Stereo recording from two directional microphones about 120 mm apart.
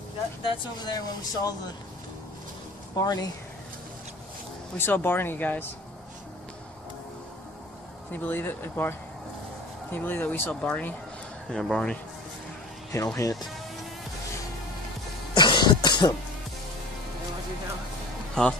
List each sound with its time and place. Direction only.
0.4 s speech: 45° left (ahead or behind)
0.9 s speech: 30° left (ahead or behind)
3.0 s speech: 30° left (ahead or behind)
4.7 s speech: 20° left (ahead or behind)
8.1 s speech: 15° left (ahead or behind)
12.9 s speech: 25° left (ahead or behind)
15.3 s cough: 40° left (ahead or behind)
18.4 s speech: 5° left (ahead or behind)